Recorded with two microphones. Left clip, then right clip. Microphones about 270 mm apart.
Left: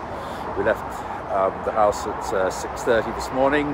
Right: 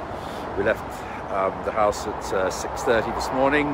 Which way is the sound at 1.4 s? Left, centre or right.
Centre.